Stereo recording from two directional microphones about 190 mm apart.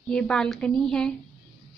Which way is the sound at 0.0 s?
5° left (ahead or behind).